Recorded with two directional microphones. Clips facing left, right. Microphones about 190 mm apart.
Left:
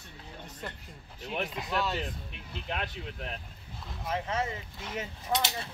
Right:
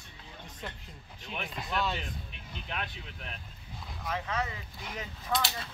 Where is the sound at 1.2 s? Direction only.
40° left (ahead or behind).